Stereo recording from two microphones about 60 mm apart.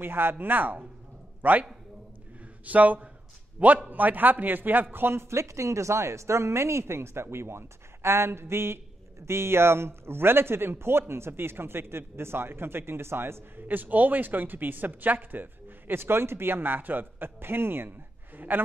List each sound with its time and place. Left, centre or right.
0.0 s a man's voice: right